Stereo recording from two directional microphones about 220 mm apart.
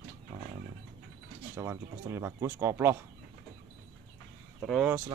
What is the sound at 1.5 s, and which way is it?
Speech, 10° right (ahead or behind).